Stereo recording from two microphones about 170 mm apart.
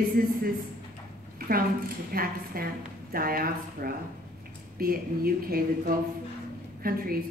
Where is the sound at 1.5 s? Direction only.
60° right (ahead or behind).